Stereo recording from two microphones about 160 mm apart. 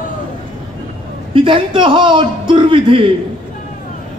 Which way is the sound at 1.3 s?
30° right (ahead or behind).